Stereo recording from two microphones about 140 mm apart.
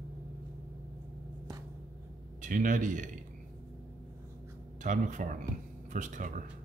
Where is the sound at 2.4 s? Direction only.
65° right (ahead or behind).